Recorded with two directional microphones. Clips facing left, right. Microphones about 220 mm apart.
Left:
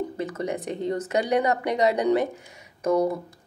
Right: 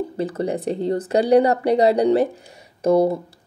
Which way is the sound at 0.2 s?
35° right (ahead or behind).